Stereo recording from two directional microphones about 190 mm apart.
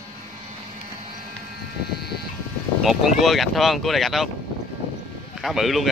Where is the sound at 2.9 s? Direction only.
Centre (ahead or behind).